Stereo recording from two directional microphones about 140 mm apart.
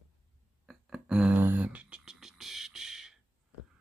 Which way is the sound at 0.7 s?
5° right (ahead or behind).